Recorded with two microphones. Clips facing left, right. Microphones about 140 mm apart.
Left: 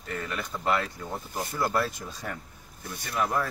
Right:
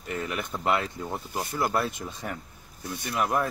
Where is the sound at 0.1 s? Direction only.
20° right (ahead or behind).